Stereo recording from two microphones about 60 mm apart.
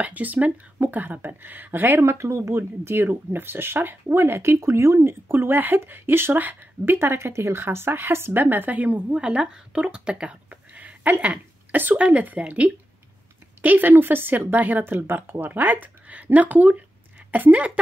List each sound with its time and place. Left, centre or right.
0.0 s speech: right